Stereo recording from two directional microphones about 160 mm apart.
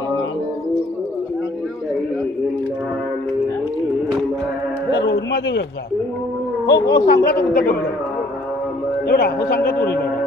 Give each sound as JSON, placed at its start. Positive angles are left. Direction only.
{"t": 5.0, "sound": "a sound", "side_deg": 90}
{"t": 6.6, "sound": "a man's voice", "side_deg": 90}
{"t": 9.0, "sound": "a man's voice", "side_deg": 80}